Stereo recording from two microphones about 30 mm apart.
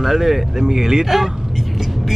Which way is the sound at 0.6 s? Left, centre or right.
Centre.